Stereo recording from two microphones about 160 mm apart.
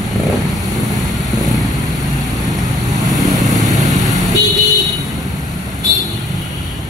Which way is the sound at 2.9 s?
Centre (ahead or behind).